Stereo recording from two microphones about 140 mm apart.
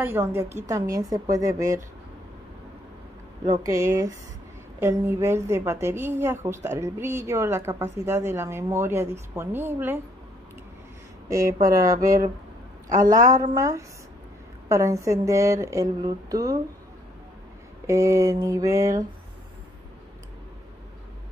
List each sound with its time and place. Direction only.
0.0 s a woman's voice: 15° right (ahead or behind)
3.6 s a woman's voice: 20° right (ahead or behind)
11.2 s a woman's voice: 25° right (ahead or behind)
17.8 s a woman's voice: 20° right (ahead or behind)